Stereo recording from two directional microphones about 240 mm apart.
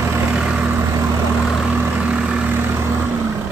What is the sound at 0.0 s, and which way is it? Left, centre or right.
Vehicle, centre.